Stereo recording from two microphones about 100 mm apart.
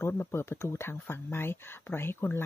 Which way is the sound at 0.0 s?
25° left (ahead or behind).